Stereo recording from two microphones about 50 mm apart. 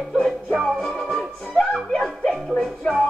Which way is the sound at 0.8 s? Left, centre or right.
Left.